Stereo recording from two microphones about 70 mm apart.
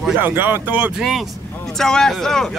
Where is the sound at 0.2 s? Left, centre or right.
Right.